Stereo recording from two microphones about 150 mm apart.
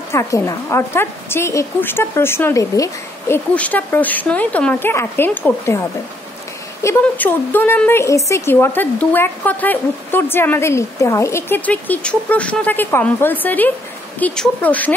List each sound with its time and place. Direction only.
0.1 s speech: 20° left (ahead or behind)
3.5 s speech: 10° left (ahead or behind)
7.0 s speech: 10° left (ahead or behind)